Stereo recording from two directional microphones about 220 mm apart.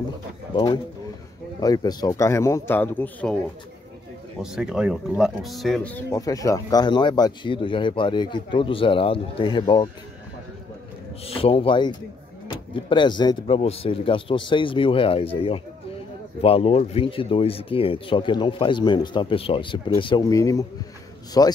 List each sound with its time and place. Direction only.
1.6 s speech: 15° left (ahead or behind)
4.4 s speech: 5° right (ahead or behind)
6.1 s speech: 15° left (ahead or behind)
11.2 s speech: 25° left (ahead or behind)